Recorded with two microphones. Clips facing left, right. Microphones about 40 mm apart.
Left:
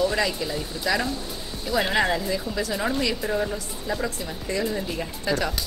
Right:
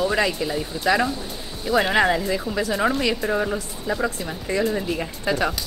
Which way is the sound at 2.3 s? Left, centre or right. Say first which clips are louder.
Right 3 dB; right.